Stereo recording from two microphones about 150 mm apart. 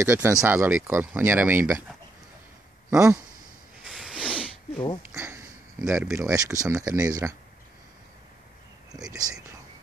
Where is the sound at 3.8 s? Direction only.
5° right (ahead or behind).